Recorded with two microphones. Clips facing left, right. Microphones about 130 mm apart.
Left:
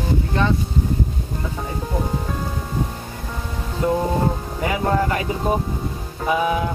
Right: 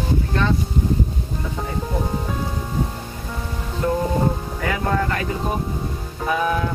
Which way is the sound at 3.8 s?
15° left (ahead or behind).